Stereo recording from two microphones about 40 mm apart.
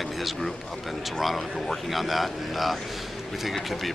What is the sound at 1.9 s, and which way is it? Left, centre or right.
Speech, centre.